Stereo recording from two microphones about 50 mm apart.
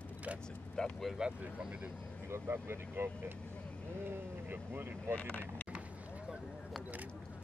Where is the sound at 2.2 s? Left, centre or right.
Right.